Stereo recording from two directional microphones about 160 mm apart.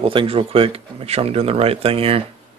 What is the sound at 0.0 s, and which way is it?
Speech, 35° right (ahead or behind).